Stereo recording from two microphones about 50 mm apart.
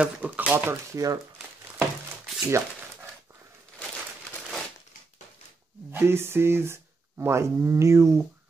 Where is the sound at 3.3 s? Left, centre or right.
Right.